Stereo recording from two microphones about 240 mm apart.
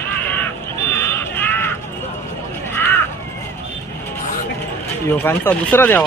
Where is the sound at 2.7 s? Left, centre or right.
Centre.